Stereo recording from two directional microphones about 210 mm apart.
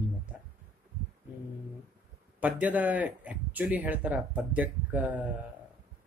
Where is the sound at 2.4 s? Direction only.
5° right (ahead or behind).